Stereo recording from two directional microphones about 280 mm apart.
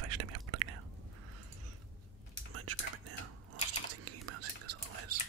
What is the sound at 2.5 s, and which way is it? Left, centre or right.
Whispering, right.